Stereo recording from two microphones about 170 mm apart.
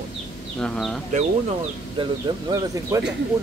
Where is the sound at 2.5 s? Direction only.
20° right (ahead or behind).